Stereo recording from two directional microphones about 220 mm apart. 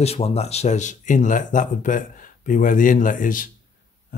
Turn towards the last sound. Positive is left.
turn(degrees=35)  # may be behind; listen again after turning